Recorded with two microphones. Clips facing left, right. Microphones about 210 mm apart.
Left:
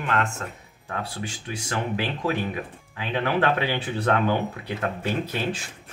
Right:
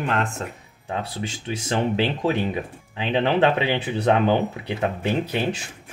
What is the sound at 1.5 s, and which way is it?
Speech, 25° right (ahead or behind).